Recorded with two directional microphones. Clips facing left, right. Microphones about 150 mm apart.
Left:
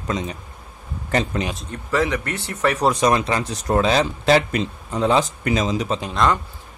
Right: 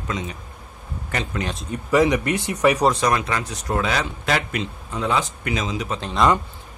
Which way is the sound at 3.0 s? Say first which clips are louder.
Left 3 dB; 30° left (ahead or behind).